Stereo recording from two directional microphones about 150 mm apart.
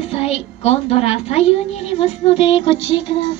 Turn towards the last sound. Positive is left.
turn(degrees=40)  # may be behind; listen again after turning